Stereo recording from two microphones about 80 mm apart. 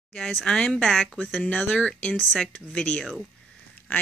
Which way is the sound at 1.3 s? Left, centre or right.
Centre.